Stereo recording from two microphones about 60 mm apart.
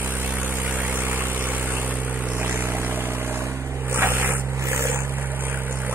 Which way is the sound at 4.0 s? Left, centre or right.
Right.